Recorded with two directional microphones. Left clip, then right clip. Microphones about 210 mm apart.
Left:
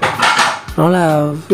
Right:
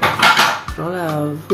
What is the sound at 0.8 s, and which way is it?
Speech, 35° left (ahead or behind).